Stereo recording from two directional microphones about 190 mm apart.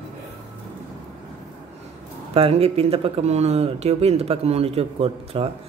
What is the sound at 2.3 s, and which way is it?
Speech, 30° right (ahead or behind).